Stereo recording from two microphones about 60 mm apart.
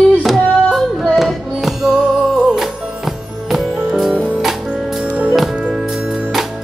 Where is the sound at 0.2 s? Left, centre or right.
Centre.